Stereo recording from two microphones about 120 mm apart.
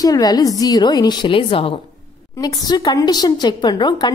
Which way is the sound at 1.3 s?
50° left (ahead or behind).